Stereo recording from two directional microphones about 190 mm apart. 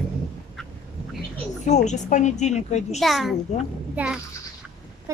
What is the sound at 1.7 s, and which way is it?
A woman's voice, 40° left (ahead or behind).